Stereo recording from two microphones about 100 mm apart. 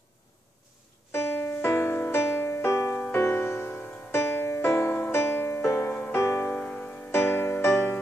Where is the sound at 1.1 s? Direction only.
25° left (ahead or behind).